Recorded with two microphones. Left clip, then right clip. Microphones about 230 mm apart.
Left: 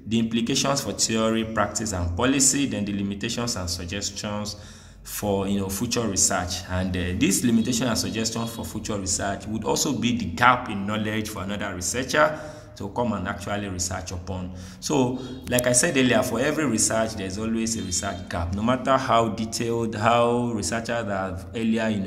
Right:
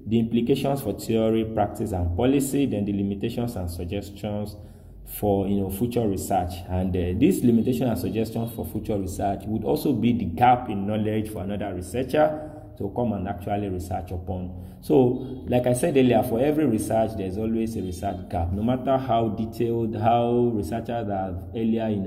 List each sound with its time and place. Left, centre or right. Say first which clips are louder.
0.1 s speech: right 2 dB; centre
5.2 s speech: right 2 dB; left
5.8 s speech: left 2 dB; centre
15.5 s speech: even; centre